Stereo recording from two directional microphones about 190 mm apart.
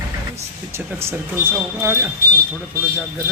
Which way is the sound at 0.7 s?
15° right (ahead or behind).